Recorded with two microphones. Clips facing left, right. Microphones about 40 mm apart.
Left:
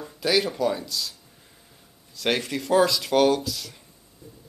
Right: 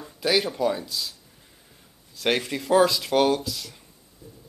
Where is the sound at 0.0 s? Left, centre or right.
Centre.